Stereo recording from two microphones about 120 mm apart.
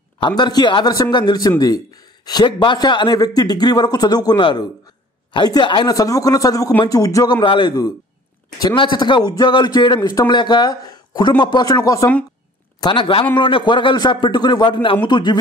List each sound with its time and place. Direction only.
0.4 s speech: 35° left (ahead or behind)
12.8 s a man's voice: 45° left (ahead or behind)